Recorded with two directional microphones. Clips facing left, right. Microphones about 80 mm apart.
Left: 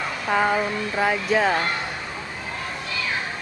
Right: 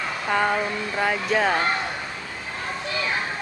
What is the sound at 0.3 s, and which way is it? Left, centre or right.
Speech, centre.